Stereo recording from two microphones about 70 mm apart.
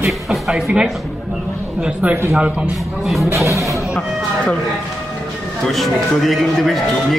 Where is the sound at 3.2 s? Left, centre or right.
Right.